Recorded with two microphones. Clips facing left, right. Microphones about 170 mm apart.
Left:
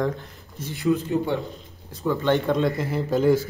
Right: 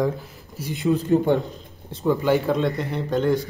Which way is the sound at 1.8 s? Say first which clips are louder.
Right 4 dB; 25° right (ahead or behind).